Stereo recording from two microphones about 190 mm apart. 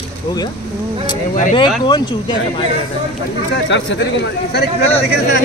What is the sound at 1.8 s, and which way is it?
Speech, 25° left (ahead or behind).